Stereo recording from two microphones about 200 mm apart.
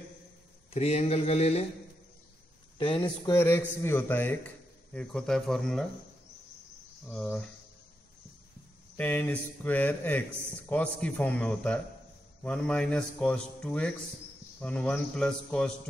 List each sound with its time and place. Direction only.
0.7 s speech: 30° left (ahead or behind)
2.8 s speech: 25° left (ahead or behind)
3.3 s a man's voice: 10° left (ahead or behind)
7.1 s a man's voice: 5° left (ahead or behind)
8.9 s a man's voice: 10° left (ahead or behind)